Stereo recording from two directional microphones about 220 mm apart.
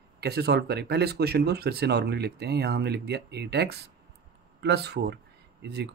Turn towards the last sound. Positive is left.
turn(degrees=-50)  # may be behind; listen again after turning